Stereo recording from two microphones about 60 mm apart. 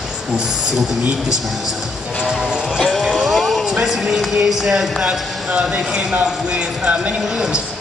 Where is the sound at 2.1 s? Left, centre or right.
Centre.